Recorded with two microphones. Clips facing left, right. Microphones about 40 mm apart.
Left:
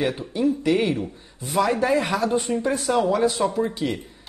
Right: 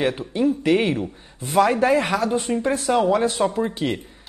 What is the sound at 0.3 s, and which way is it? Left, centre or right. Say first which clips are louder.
Speech: right 2 dB; right.